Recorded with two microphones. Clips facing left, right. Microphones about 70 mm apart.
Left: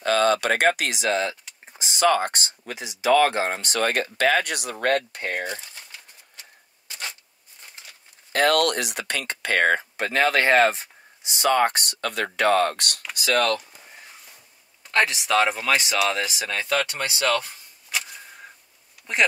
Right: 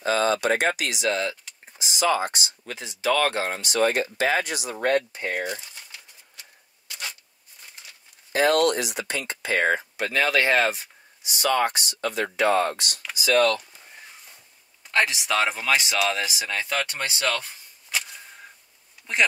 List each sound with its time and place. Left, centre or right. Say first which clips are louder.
0.0 s speech: left 2 dB; left
1.8 s speech: left 3 dB; left
2.6 s speech: left 2 dB; centre
3.4 s speech: right 1 dB; left
8.3 s speech: even; left
9.9 s speech: left 2 dB; left
11.7 s speech: even; left
14.9 s speech: left 2 dB; centre
17.2 s speech: left 4 dB; centre